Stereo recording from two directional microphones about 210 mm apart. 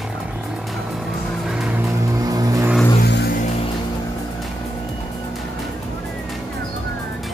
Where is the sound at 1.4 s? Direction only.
5° right (ahead or behind).